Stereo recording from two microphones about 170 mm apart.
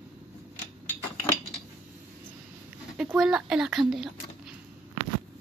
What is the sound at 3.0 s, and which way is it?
Speech, 5° right (ahead or behind).